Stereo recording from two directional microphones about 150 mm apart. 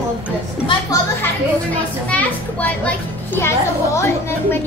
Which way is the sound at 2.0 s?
10° left (ahead or behind).